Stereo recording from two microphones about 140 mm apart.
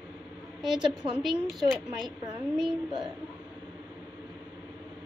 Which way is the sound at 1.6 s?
30° right (ahead or behind).